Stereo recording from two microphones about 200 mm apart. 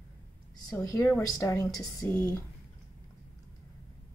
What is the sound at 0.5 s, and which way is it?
A woman's voice, 20° left (ahead or behind).